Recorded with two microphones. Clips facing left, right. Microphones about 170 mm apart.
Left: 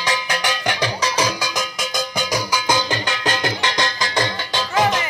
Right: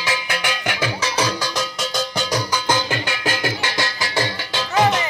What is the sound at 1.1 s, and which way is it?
Music, 15° left (ahead or behind).